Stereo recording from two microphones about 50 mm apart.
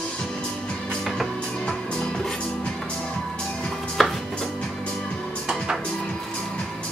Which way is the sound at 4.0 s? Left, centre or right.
Centre.